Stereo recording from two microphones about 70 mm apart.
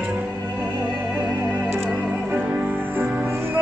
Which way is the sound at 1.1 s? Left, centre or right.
Right.